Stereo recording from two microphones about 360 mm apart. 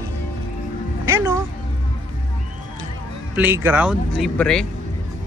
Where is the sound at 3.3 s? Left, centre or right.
Centre.